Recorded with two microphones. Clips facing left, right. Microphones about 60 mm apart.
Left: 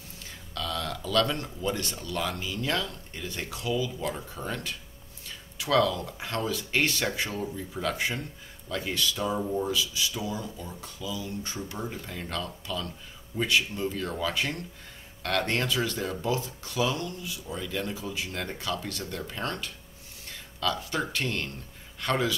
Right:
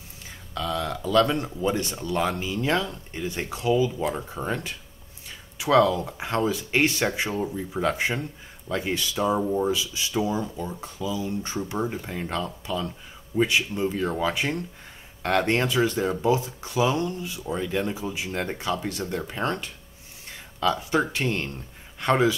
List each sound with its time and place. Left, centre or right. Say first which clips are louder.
0.6 s speech: right 5 dB; centre